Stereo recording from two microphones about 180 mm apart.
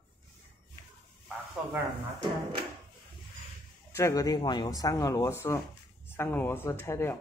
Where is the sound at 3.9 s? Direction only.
20° left (ahead or behind).